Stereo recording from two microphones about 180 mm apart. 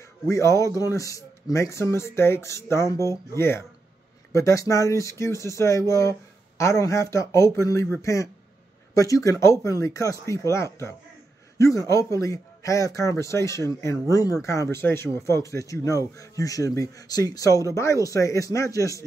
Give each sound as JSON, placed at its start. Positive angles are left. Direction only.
{"t": 0.3, "sound": "speech", "side_deg": 15}